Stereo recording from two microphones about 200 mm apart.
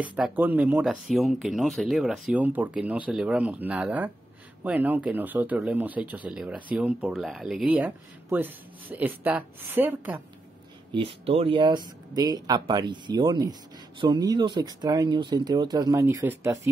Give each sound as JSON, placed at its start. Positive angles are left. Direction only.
{"t": 0.0, "sound": "speech", "side_deg": -5}
{"t": 11.2, "sound": "speech", "side_deg": -30}